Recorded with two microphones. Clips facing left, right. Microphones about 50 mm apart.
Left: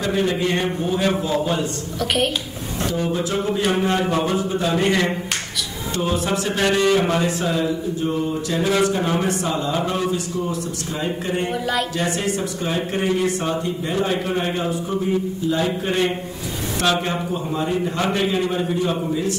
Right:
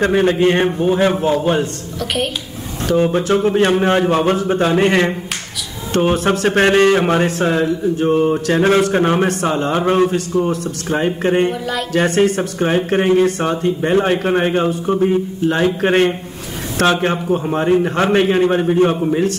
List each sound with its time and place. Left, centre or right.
0.0 s a man's voice: right
2.0 s a child's voice: centre
2.9 s speech: right